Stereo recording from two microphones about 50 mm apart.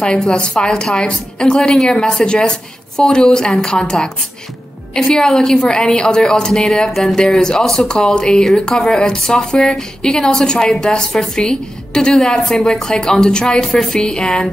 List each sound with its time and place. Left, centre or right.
0.0 s speech: centre
6.9 s speech: centre
7.2 s speech: centre